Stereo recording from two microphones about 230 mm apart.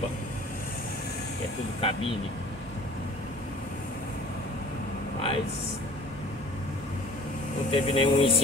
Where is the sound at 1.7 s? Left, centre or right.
Left.